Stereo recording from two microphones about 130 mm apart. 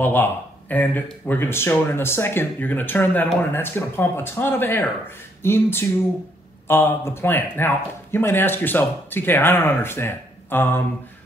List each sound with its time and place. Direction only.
0.0 s speech: 15° left (ahead or behind)
5.4 s a sound: 20° left (ahead or behind)
6.7 s speech: 15° left (ahead or behind)